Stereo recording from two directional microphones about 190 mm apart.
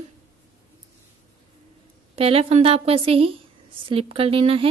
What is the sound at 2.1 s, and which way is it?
A woman's voice, 30° right (ahead or behind).